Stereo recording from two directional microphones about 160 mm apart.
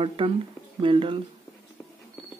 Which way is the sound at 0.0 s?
35° right (ahead or behind).